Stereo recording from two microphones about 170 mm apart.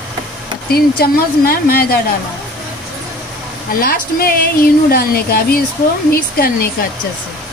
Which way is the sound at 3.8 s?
60° left (ahead or behind).